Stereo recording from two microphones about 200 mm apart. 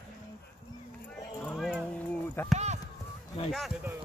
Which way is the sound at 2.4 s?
10° left (ahead or behind).